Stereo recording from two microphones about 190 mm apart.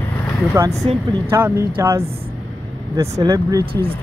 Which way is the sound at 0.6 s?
15° right (ahead or behind).